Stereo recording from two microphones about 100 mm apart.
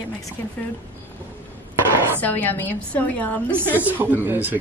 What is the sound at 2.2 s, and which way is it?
A woman's voice, 15° left (ahead or behind).